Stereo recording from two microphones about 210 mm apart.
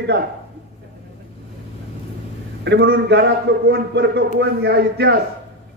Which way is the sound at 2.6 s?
55° right (ahead or behind).